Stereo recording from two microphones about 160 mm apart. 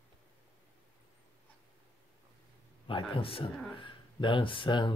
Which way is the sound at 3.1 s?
35° left (ahead or behind).